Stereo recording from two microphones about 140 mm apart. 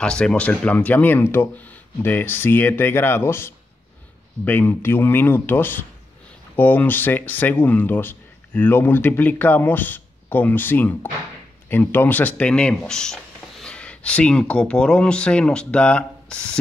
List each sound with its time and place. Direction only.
0.0 s speech: 5° left (ahead or behind)